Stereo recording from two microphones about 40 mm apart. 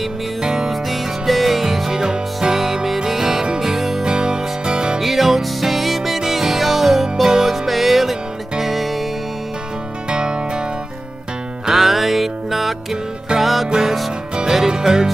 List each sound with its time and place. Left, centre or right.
0.4 s music: centre
0.8 s music: centre
3.7 s music: centre
4.0 s music: centre
5.0 s music: centre
10.0 s music: right
11.7 s music: centre